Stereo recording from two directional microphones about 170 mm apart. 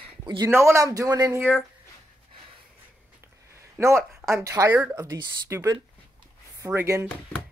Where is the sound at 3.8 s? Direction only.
15° right (ahead or behind).